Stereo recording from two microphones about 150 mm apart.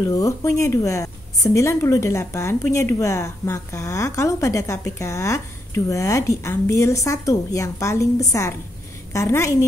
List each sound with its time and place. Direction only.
0.1 s a woman's voice: 25° left (ahead or behind)